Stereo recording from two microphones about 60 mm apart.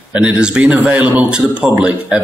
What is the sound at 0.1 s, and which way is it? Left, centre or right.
A man's voice, centre.